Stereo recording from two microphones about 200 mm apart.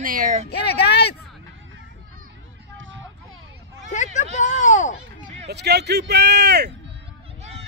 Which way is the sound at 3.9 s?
35° left (ahead or behind).